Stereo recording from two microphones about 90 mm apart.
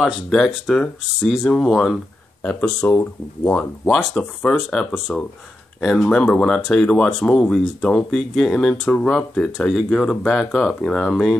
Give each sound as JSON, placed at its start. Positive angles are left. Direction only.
{"t": 0.0, "sound": "speech", "side_deg": 0}
{"t": 3.9, "sound": "speech", "side_deg": 10}